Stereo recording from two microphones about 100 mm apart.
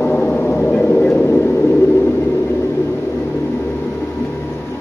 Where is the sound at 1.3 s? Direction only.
20° left (ahead or behind).